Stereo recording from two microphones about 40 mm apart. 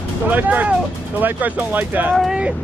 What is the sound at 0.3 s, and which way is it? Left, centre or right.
Speech, right.